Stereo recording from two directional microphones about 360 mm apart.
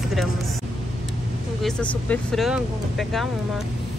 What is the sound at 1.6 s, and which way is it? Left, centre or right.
Speech, centre.